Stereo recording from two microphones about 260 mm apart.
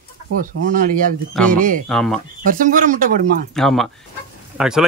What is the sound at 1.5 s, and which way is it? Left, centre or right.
Speech, right.